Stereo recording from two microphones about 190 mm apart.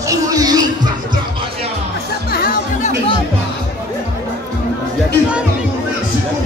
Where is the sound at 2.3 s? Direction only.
50° left (ahead or behind).